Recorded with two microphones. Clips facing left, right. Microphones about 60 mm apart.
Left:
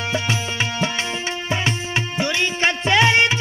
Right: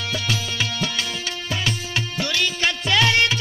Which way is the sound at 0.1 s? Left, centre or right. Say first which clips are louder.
Left 2 dB; left.